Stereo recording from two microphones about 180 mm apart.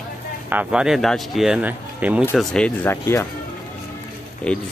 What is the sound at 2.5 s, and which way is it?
Speech, 10° left (ahead or behind).